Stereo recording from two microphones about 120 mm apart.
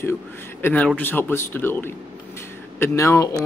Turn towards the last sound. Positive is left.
turn(degrees=25)  # may be behind; listen again after turning